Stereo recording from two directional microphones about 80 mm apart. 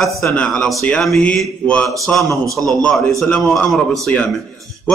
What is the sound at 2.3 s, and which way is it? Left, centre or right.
Speech, right.